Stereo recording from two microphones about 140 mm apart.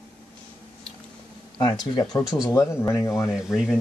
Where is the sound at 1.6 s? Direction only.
30° left (ahead or behind).